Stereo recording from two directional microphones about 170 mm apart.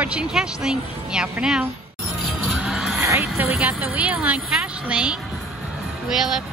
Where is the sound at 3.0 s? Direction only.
15° right (ahead or behind).